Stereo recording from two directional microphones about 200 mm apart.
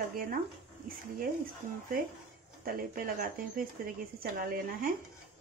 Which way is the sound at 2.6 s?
45° right (ahead or behind).